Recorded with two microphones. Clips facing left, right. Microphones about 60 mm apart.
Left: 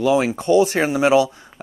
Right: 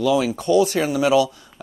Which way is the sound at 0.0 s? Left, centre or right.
Left.